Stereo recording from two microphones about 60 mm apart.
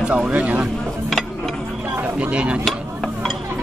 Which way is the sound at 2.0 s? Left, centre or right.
Right.